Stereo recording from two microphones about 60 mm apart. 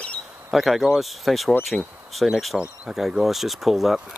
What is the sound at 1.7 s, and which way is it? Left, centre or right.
Speech, centre.